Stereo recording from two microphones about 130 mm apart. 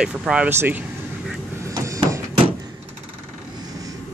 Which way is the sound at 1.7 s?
25° right (ahead or behind).